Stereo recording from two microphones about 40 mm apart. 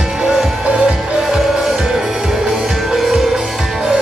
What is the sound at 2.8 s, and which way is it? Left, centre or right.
Music, centre.